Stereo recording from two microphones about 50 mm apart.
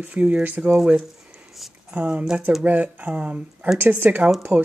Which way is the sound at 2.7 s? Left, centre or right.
Right.